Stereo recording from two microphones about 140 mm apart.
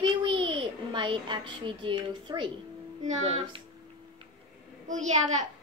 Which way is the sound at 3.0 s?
55° right (ahead or behind).